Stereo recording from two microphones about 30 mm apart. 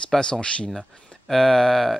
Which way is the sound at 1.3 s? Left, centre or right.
Centre.